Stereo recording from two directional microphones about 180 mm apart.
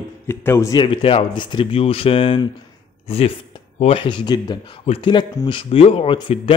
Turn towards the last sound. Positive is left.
turn(degrees=30)  # may be behind; listen again after turning